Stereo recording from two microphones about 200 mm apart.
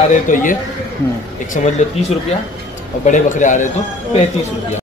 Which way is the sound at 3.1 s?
40° left (ahead or behind).